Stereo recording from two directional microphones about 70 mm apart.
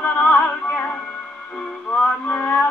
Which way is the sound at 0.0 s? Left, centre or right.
Left.